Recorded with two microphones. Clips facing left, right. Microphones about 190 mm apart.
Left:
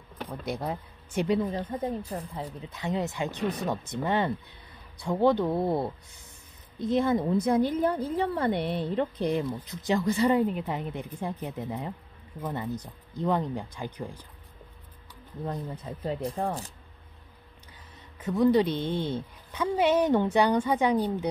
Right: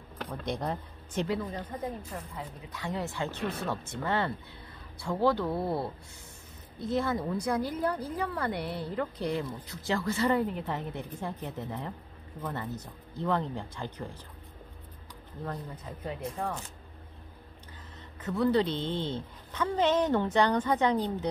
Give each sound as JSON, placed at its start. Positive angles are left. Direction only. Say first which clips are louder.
{"t": 0.2, "sound": "speech", "louder": "left 1 dB", "side_deg": 5}
{"t": 1.3, "sound": "a woman's voice", "louder": "left 6 dB", "side_deg": 25}
{"t": 15.7, "sound": "speech", "louder": "left 5 dB", "side_deg": 30}
{"t": 18.2, "sound": "a woman's voice", "louder": "left 4 dB", "side_deg": 15}